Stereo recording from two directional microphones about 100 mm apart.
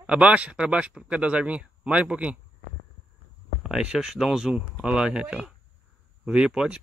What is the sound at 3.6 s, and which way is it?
A man's voice, 5° right (ahead or behind).